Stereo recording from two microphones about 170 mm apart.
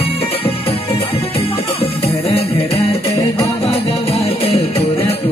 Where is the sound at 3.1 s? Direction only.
15° left (ahead or behind).